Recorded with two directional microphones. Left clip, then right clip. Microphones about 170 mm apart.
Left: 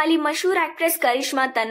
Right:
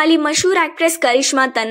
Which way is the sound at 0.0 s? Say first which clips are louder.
Right 6 dB; 25° right (ahead or behind).